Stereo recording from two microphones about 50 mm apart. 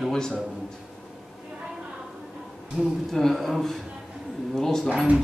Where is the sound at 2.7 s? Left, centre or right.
Centre.